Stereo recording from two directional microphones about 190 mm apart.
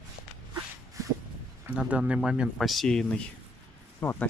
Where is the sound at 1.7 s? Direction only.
5° right (ahead or behind).